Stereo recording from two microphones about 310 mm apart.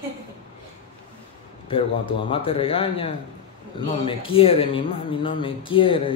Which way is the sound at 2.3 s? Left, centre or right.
Centre.